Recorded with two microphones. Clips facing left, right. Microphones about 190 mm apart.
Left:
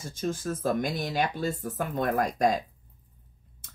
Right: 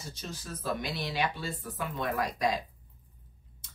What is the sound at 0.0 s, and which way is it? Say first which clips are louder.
Speech: left 11 dB; 50° left (ahead or behind).